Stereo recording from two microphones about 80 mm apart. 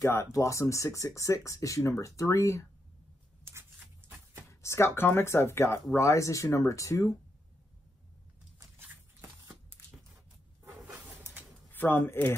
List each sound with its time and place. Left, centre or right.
0.0 s speech: left
3.5 s a sound: right
4.5 s speech: left
8.8 s walk: centre
10.6 s a sound: right
11.7 s speech: left